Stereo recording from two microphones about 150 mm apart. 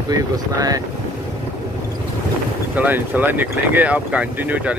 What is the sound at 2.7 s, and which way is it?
Speech, 10° right (ahead or behind).